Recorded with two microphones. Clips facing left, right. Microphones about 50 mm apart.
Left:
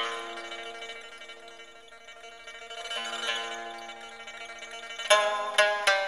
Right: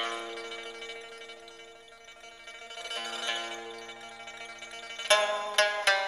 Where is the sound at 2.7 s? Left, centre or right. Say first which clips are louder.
Left 2 dB; centre.